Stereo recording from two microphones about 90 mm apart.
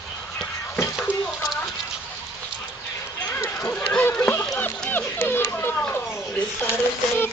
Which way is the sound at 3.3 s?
30° left (ahead or behind).